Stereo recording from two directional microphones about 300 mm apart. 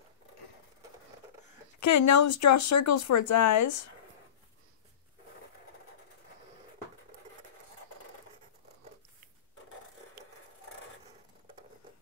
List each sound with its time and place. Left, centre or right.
1.8 s speech: left